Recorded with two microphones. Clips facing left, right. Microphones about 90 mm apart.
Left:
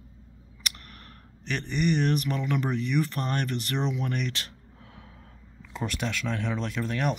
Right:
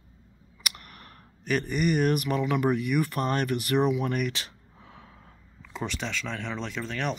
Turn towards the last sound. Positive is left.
turn(degrees=5)  # may be behind; listen again after turning